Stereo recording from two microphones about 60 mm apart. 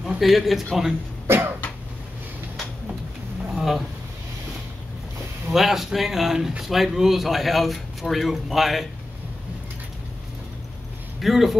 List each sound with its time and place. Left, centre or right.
0.2 s speech: centre
1.2 s cough: right
3.4 s a sound: centre
5.5 s speech: centre
11.1 s speech: centre